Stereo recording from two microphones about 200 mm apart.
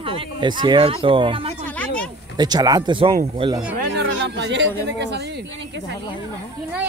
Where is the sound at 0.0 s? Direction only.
25° right (ahead or behind).